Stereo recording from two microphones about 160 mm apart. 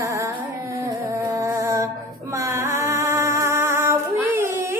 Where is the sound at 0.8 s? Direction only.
20° right (ahead or behind).